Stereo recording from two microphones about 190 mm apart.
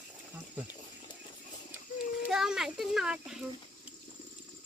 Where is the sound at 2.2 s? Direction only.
Centre (ahead or behind).